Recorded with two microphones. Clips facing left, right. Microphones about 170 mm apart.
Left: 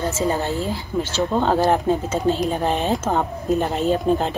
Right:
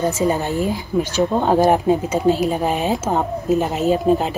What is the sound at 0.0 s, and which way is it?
Speech, 15° right (ahead or behind).